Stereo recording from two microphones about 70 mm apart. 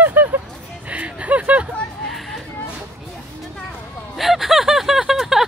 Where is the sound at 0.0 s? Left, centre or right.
Right.